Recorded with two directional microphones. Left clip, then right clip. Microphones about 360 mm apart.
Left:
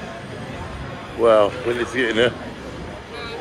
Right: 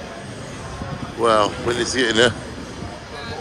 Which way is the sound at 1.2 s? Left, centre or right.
Centre.